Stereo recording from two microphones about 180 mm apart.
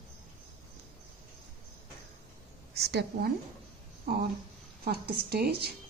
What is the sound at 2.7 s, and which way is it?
Speech, 65° right (ahead or behind).